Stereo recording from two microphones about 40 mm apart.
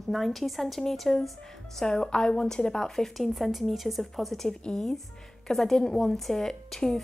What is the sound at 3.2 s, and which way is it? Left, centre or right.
Speech, centre.